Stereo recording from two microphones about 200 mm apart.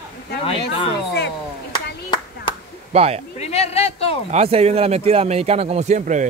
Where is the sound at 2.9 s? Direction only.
30° right (ahead or behind).